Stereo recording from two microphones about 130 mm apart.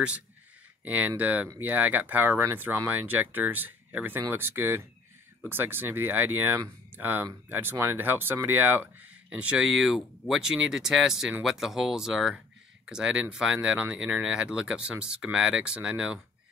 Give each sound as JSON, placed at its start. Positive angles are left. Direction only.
{"t": 0.8, "sound": "speech", "side_deg": -10}